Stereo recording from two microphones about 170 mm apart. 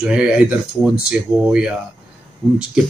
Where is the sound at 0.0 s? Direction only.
5° right (ahead or behind).